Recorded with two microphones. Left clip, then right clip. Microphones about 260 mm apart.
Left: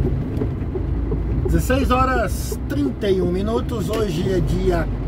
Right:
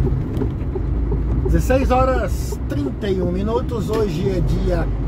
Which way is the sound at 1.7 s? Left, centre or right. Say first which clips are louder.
Right 2 dB; centre.